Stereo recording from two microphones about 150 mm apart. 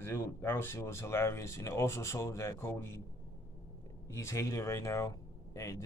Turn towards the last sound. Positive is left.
turn(degrees=20)  # may be behind; listen again after turning